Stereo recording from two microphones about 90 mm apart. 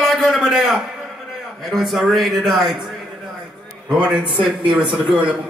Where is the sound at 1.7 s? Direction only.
Centre (ahead or behind).